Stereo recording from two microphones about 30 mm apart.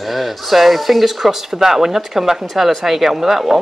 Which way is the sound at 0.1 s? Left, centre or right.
Centre.